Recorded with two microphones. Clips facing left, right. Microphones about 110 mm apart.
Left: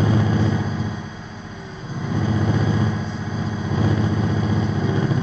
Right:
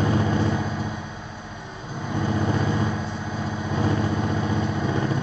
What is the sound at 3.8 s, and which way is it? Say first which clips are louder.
Vehicle: left 2 dB; 15° left (ahead or behind).